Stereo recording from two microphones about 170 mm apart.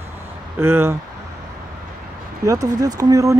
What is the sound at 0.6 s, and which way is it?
Speech, 15° right (ahead or behind).